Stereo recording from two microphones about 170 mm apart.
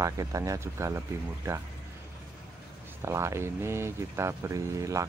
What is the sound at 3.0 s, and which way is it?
Speech, 15° right (ahead or behind).